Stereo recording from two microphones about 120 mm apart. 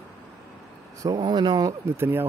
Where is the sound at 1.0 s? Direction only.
35° right (ahead or behind).